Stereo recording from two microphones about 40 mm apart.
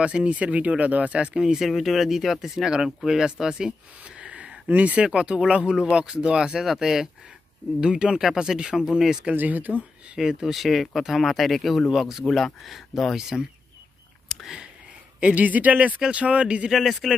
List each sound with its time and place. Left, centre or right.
0.0 s speech: right
1.4 s speech: centre
4.6 s speech: right
5.0 s speech: right
6.6 s speech: centre
7.8 s speech: right
8.2 s speech: centre
9.3 s speech: right
10.1 s speech: centre
11.9 s speech: centre
14.3 s a sound: centre
15.1 s speech: right
16.7 s speech: centre